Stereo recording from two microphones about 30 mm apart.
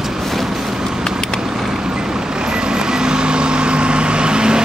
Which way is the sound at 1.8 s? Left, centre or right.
Right.